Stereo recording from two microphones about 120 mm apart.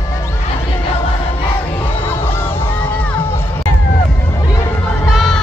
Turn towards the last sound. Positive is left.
turn(degrees=0)  # may be behind; listen again after turning